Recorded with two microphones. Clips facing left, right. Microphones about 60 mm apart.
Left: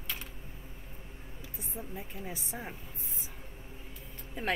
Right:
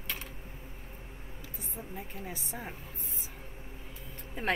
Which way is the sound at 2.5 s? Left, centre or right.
Centre.